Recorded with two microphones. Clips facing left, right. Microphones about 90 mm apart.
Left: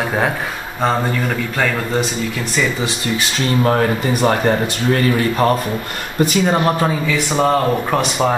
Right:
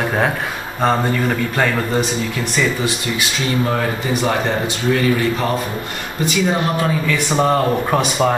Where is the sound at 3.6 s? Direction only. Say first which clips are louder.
Left 4 dB; 50° left (ahead or behind).